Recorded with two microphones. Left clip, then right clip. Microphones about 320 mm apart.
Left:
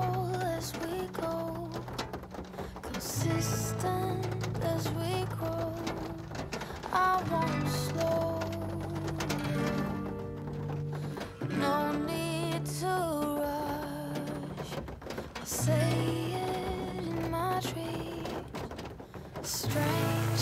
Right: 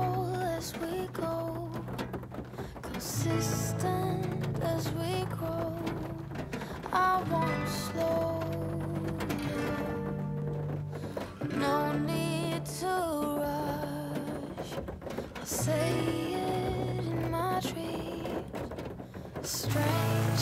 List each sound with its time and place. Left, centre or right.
0.1 s music: centre
3.2 s music: centre
6.9 s music: centre
11.6 s music: centre
15.5 s music: centre
19.5 s music: centre